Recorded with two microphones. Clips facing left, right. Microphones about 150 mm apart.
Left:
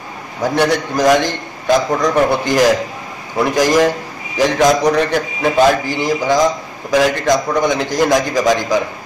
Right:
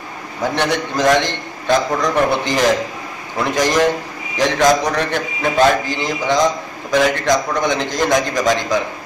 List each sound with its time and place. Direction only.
0.6 s a man's voice: 10° left (ahead or behind)